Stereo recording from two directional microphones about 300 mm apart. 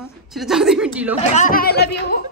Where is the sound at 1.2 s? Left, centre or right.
Left.